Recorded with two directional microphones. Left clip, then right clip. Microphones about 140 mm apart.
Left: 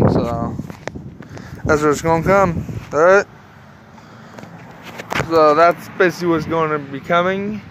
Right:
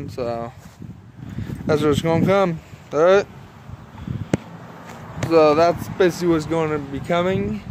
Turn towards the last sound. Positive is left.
turn(degrees=-20)  # may be behind; listen again after turning